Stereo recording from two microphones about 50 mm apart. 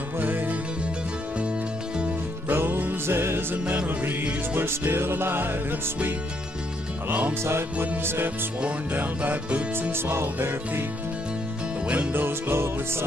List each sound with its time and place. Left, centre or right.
0.2 s music: right
2.5 s music: right
3.5 s music: right
3.8 s music: right
4.6 s music: right
7.1 s music: right
8.0 s music: right
8.9 s music: right
9.8 s music: right
12.1 s music: right